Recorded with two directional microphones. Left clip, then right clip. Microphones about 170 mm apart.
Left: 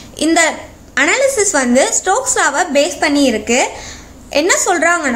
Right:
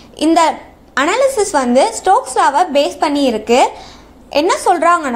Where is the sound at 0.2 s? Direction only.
5° right (ahead or behind).